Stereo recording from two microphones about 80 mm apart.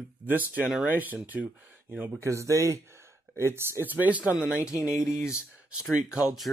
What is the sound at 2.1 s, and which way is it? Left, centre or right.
Speech, right.